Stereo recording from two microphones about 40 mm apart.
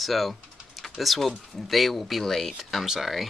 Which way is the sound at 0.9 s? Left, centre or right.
Centre.